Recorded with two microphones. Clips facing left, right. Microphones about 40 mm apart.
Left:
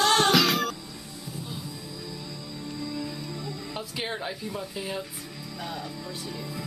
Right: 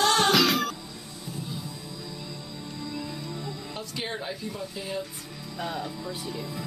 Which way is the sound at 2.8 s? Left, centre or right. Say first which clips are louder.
Left 1 dB; centre.